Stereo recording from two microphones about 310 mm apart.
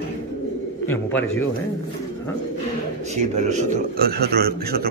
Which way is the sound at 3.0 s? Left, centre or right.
Right.